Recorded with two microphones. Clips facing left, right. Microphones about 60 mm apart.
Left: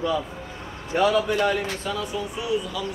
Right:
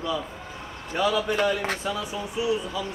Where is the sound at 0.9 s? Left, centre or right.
Left.